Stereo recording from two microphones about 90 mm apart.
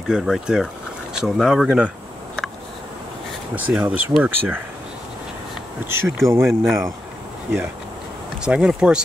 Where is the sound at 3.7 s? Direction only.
10° right (ahead or behind).